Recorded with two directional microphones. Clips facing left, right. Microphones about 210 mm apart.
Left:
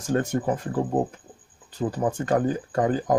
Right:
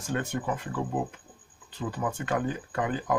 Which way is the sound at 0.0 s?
40° left (ahead or behind).